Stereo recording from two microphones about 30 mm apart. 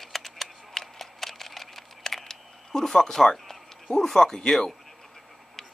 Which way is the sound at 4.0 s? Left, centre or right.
Centre.